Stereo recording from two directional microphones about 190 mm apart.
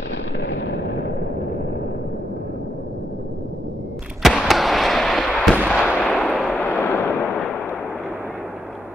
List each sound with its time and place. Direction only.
0.4 s artillery fire: 70° left (ahead or behind)
4.2 s a sound: centre (ahead or behind)
5.7 s artillery fire: centre (ahead or behind)